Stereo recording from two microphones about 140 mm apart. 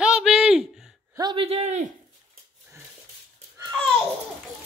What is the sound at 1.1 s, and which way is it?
Speech, 35° right (ahead or behind).